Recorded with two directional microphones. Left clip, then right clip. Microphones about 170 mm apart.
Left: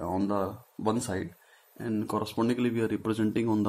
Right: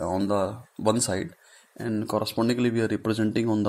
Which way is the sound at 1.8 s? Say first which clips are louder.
Right 4 dB; 30° right (ahead or behind).